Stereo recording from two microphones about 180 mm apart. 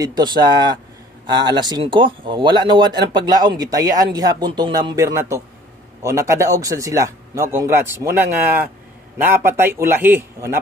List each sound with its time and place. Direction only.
0.0 s speech: 25° right (ahead or behind)